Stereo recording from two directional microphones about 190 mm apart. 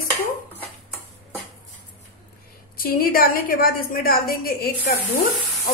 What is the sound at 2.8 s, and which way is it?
A woman's voice, 50° left (ahead or behind).